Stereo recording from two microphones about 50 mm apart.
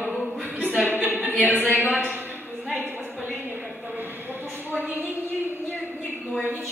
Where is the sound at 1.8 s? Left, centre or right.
Right.